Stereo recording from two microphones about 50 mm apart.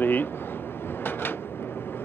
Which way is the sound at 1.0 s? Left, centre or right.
Left.